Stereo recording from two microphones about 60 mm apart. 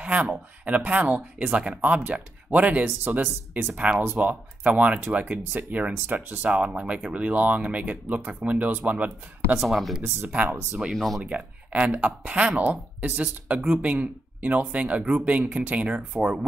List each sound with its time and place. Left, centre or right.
0.0 s a sound: right
0.7 s speech: right
3.1 s speech: right
3.7 s speech: right
6.6 s speech: centre
9.6 s speech: centre
10.0 s speech: right
10.7 s speech: centre
11.2 s speech: right